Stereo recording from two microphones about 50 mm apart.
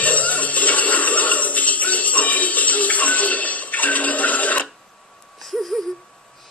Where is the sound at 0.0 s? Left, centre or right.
Left.